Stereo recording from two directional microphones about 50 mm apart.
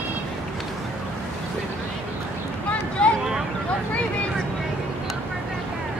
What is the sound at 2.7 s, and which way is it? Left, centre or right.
Boat, left.